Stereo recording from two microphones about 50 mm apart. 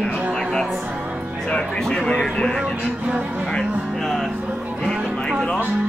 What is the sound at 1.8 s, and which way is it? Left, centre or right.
Speech, centre.